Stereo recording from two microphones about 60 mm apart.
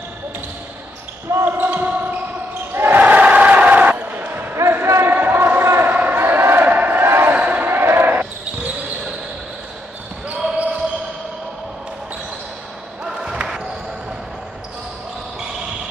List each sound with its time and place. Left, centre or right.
1.4 s basketball bounce: right
3.0 s basketball bounce: right
4.6 s basketball bounce: right
5.1 s basketball bounce: right
5.9 s crowd: right
7.3 s basketball bounce: right
13.0 s basketball bounce: centre